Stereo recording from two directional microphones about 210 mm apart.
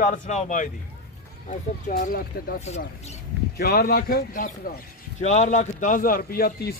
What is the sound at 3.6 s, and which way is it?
Speech, 50° left (ahead or behind).